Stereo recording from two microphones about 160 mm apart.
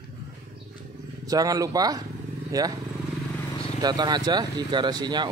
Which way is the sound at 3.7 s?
25° right (ahead or behind).